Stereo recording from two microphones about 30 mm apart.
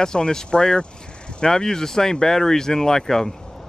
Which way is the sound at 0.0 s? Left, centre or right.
Left.